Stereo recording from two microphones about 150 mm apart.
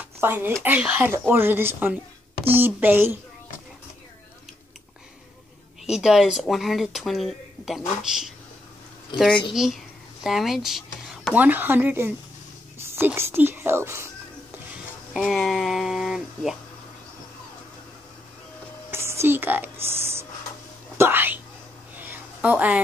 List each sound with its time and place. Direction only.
0.2 s speech: 15° right (ahead or behind)
5.9 s speech: 5° right (ahead or behind)
15.1 s speech: centre (ahead or behind)
18.9 s writing: 20° right (ahead or behind)
21.0 s whispering: 15° right (ahead or behind)
22.0 s a sound: 10° right (ahead or behind)